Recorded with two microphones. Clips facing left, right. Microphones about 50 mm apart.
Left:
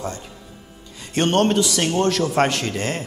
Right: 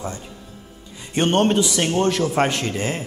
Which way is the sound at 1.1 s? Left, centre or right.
Centre.